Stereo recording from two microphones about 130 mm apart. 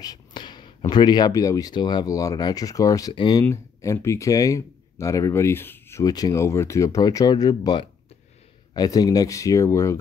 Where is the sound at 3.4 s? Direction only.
20° left (ahead or behind).